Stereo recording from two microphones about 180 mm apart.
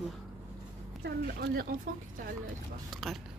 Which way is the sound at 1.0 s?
60° right (ahead or behind).